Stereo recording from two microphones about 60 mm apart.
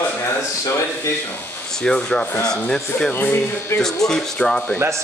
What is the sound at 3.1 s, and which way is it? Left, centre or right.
Speech, left.